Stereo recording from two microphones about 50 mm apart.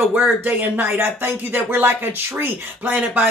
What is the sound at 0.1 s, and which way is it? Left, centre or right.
Speech, right.